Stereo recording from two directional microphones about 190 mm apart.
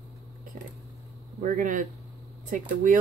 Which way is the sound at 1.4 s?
45° right (ahead or behind).